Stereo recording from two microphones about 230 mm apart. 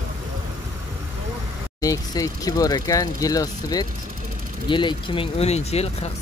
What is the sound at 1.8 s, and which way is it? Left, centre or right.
Speech, centre.